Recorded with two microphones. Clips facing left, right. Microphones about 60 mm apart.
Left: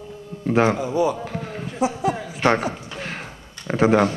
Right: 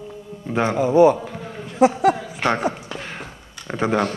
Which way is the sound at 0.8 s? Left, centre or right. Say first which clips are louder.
Right 7 dB; right.